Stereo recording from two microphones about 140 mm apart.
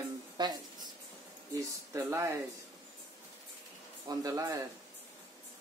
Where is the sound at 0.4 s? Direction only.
30° right (ahead or behind).